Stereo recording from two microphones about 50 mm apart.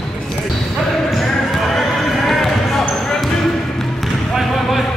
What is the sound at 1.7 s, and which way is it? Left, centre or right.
Basketball bounce, centre.